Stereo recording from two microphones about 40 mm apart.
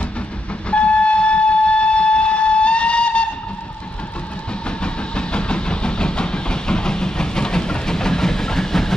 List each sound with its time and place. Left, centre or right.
0.7 s train: left
4.6 s vehicle: left